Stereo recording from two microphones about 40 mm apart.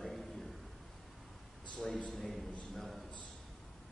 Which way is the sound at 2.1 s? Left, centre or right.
Centre.